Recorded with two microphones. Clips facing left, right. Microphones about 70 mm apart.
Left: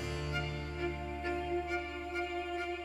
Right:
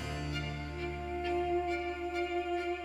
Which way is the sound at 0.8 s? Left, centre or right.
Left.